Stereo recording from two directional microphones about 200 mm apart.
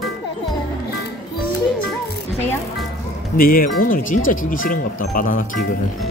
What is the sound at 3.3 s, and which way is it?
Speech, 45° left (ahead or behind).